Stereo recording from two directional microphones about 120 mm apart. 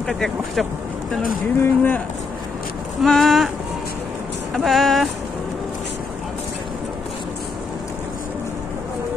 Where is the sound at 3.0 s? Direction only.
Centre (ahead or behind).